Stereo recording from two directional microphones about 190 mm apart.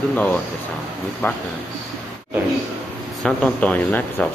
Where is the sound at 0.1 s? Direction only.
5° left (ahead or behind).